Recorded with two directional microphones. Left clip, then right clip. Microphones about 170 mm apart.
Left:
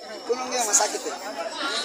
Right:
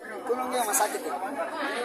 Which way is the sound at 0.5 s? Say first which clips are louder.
Left 4 dB; 30° left (ahead or behind).